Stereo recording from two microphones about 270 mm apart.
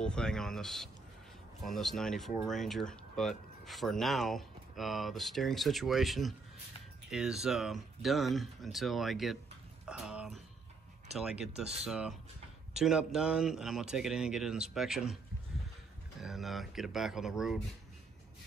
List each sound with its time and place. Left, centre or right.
0.0 s speech: centre
9.8 s a sound: centre
11.1 s speech: centre
16.2 s speech: centre